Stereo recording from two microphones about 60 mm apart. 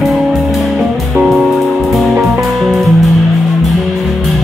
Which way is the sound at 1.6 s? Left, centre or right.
Centre.